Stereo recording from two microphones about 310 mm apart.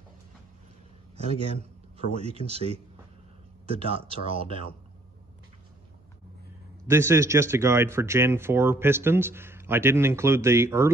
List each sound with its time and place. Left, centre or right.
1.1 s a man's voice: centre
6.9 s speech: centre